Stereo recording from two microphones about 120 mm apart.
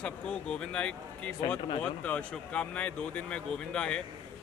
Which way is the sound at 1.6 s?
50° left (ahead or behind).